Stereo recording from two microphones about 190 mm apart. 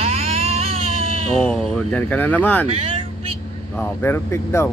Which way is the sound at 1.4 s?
Centre (ahead or behind).